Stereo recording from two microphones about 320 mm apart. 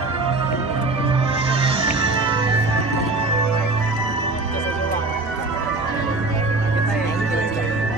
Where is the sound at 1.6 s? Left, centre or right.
Centre.